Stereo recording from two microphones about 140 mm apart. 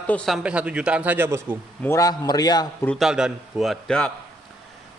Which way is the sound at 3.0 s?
5° right (ahead or behind).